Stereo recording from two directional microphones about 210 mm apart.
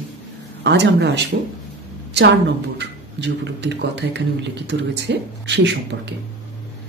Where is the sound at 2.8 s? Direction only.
55° right (ahead or behind).